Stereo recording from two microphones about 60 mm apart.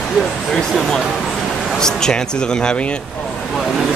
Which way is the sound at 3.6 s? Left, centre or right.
Centre.